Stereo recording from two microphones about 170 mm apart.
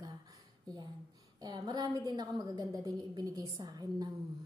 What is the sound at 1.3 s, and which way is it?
A woman's voice, 25° right (ahead or behind).